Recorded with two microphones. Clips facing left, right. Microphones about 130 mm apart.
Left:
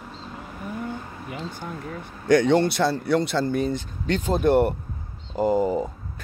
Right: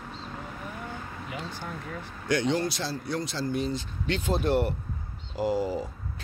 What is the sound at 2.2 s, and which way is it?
Speech, 50° left (ahead or behind).